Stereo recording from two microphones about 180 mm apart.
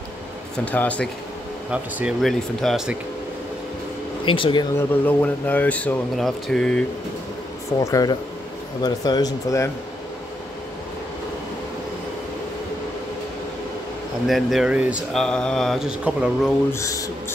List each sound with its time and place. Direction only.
0.7 s speech: 10° left (ahead or behind)
1.7 s mantra: 5° right (ahead or behind)
4.3 s speech: 30° left (ahead or behind)
4.7 s speech: 10° left (ahead or behind)
7.8 s speech: 20° left (ahead or behind)
14.2 s mantra: centre (ahead or behind)
15.2 s mantra: 5° left (ahead or behind)
16.7 s speech: 15° left (ahead or behind)